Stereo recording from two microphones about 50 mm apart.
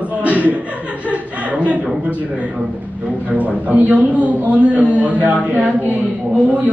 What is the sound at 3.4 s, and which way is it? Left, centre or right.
A man's voice, right.